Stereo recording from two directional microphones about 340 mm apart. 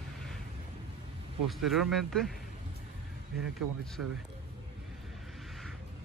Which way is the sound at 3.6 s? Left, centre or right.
Right.